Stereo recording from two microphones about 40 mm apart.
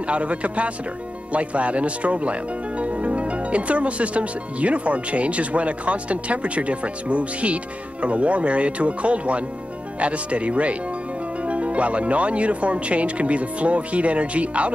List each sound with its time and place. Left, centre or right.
0.0 s speech: right